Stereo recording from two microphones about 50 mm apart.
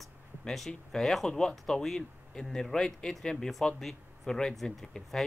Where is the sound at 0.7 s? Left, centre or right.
Centre.